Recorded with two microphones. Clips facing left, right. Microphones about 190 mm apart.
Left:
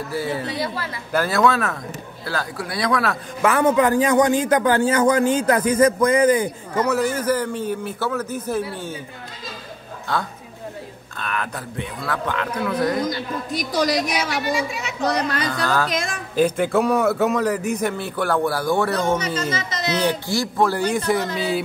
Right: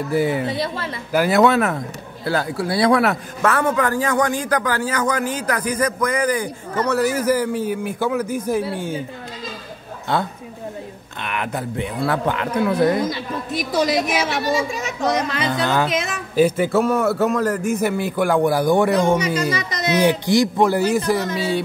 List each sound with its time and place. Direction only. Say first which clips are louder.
0.1 s speech: right 6 dB; 20° right (ahead or behind)
3.4 s a man's voice: left 2 dB; 20° left (ahead or behind)
6.7 s a man's voice: right 1 dB; 10° left (ahead or behind)
7.0 s a man's voice: right 2 dB; 10° right (ahead or behind)
10.1 s speech: right 4 dB; 25° right (ahead or behind)
13.5 s speech: right 2 dB; centre (ahead or behind)
14.4 s speech: right 3 dB; 40° right (ahead or behind)
15.4 s speech: right 2 dB; 25° right (ahead or behind)
15.9 s a man's voice: right 2 dB; 5° right (ahead or behind)